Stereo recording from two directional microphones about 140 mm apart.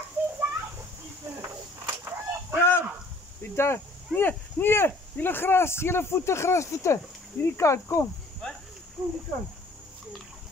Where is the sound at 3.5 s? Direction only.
15° left (ahead or behind).